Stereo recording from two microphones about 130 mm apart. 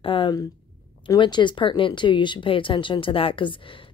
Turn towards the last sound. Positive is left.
turn(degrees=40)  # may be behind; listen again after turning